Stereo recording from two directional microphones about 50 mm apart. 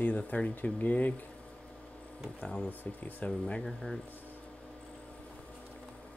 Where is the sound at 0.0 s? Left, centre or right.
Left.